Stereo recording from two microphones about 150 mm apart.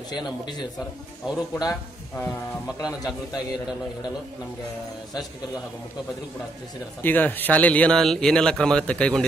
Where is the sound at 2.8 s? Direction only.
25° left (ahead or behind).